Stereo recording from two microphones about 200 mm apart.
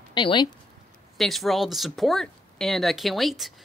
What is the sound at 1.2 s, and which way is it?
Speech, centre (ahead or behind).